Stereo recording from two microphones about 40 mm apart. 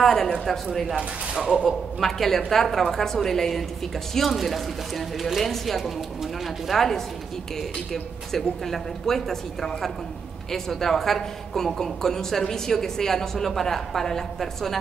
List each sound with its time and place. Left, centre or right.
0.0 s a woman's voice: centre
1.3 s speech: centre
1.6 s a woman's voice: centre